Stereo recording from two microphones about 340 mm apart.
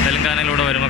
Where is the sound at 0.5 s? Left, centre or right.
Left.